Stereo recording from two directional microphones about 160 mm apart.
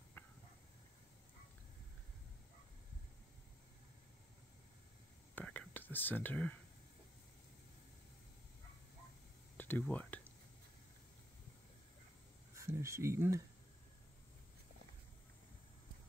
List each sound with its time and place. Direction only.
0.2 s a sound: 15° left (ahead or behind)
5.3 s whispering: 10° left (ahead or behind)
9.6 s speech: 10° left (ahead or behind)
12.5 s speech: 20° right (ahead or behind)